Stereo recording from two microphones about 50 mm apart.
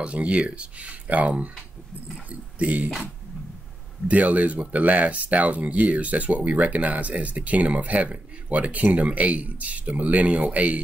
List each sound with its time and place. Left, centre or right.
0.0 s speech: right
2.6 s speech: right
4.1 s speech: right